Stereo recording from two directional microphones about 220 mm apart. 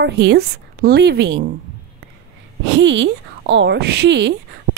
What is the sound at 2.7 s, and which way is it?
A woman's voice, 55° right (ahead or behind).